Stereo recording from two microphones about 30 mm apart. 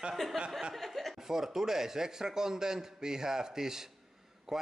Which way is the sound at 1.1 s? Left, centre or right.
Centre.